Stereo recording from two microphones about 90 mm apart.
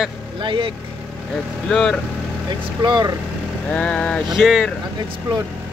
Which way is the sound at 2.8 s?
55° right (ahead or behind).